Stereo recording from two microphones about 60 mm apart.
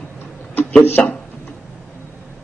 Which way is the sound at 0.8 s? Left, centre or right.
Left.